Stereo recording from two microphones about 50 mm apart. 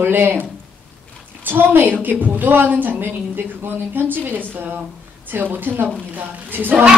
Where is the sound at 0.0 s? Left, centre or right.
Right.